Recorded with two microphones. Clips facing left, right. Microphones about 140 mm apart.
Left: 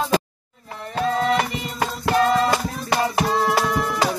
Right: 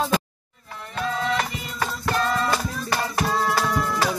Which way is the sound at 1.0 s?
35° left (ahead or behind).